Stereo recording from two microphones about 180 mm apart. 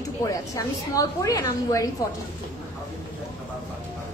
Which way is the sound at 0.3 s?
20° left (ahead or behind).